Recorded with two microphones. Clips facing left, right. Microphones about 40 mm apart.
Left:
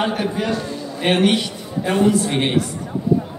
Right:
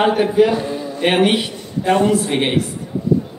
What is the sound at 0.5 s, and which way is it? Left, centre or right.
Speech, right.